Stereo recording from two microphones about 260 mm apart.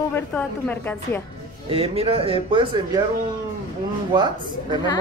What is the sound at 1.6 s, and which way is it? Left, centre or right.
Speech, right.